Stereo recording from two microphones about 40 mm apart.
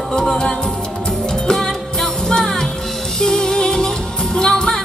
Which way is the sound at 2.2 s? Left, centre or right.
Centre.